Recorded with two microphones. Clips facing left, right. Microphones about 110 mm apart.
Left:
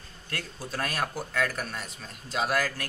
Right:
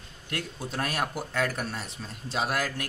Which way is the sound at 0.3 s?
25° right (ahead or behind).